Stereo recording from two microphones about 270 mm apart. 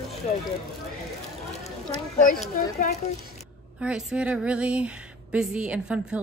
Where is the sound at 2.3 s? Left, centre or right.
Left.